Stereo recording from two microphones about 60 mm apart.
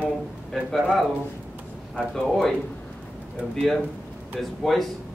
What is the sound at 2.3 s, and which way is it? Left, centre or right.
Speech, centre.